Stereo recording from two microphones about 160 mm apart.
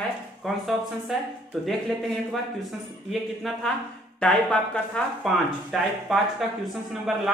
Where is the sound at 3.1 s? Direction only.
Centre (ahead or behind).